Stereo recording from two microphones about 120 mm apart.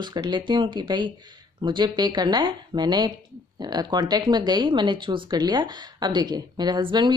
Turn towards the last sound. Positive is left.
turn(degrees=-40)  # may be behind; listen again after turning